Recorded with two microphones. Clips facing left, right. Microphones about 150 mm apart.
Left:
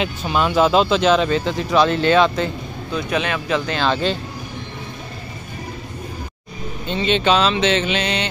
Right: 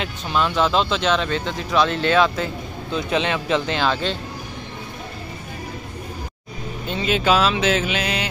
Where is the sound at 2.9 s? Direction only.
25° right (ahead or behind).